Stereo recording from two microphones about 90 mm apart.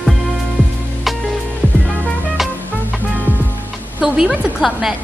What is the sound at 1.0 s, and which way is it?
Music, centre (ahead or behind).